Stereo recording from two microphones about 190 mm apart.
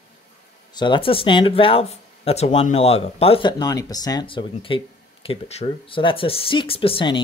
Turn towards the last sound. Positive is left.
turn(degrees=25)  # may be behind; listen again after turning